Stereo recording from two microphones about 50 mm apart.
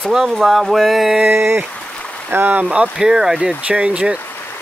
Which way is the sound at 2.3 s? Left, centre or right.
Right.